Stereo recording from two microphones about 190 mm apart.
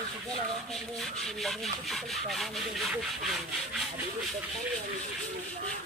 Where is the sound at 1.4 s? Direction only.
Centre (ahead or behind).